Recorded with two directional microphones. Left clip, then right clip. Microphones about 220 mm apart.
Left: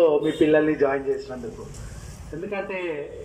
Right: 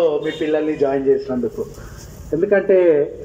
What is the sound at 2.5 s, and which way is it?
Speech, 45° right (ahead or behind).